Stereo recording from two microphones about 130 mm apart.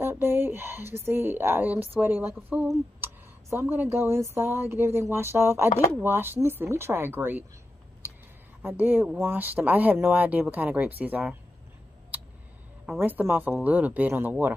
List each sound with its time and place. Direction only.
0.0 s speech: 20° right (ahead or behind)
8.6 s speech: 15° right (ahead or behind)
12.1 s a sound: 10° right (ahead or behind)
13.0 s speech: 15° right (ahead or behind)